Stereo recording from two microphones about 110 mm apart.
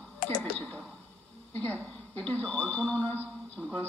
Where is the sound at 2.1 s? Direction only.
15° left (ahead or behind).